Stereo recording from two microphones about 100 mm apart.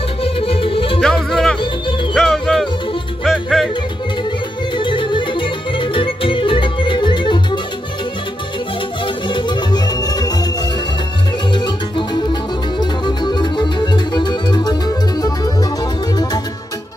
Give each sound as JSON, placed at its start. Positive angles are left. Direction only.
{"t": 0.2, "sound": "music", "side_deg": 70}
{"t": 1.0, "sound": "music", "side_deg": 5}
{"t": 4.7, "sound": "music", "side_deg": 50}
{"t": 9.0, "sound": "music", "side_deg": 50}
{"t": 11.5, "sound": "music", "side_deg": 50}